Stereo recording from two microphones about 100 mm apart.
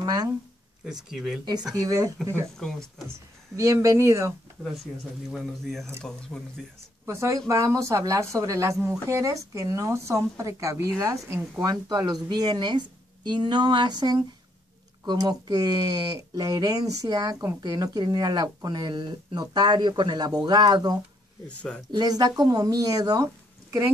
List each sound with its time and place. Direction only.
0.0 s speech: 45° right (ahead or behind)
1.1 s speech: 5° right (ahead or behind)
1.7 s a woman's voice: 40° right (ahead or behind)
3.5 s a woman's voice: 35° right (ahead or behind)
5.3 s speech: centre (ahead or behind)
7.1 s a woman's voice: 30° right (ahead or behind)
11.6 s speech: 45° right (ahead or behind)
21.5 s speech: 10° left (ahead or behind)
21.9 s a woman's voice: 40° right (ahead or behind)